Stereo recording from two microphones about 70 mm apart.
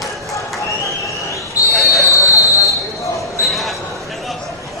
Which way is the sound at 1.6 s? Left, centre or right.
Left.